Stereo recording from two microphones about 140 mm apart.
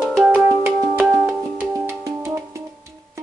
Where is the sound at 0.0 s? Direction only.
10° right (ahead or behind).